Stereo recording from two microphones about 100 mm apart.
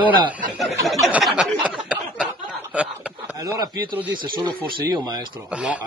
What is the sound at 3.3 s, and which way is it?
Speech, 40° right (ahead or behind).